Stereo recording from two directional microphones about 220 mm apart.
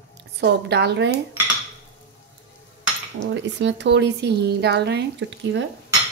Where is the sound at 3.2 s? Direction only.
55° right (ahead or behind).